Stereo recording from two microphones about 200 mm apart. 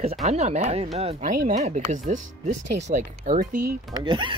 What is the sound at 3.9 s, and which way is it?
Speech, 25° right (ahead or behind).